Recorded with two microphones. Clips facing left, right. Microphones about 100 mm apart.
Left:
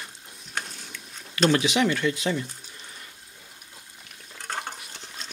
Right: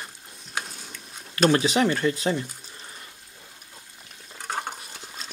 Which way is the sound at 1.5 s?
40° right (ahead or behind).